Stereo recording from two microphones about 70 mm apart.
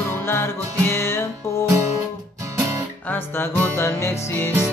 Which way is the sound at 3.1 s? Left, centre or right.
Left.